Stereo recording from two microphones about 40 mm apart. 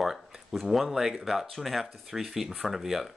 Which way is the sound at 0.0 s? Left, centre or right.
Centre.